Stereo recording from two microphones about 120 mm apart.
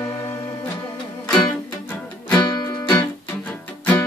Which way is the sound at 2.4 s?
35° left (ahead or behind).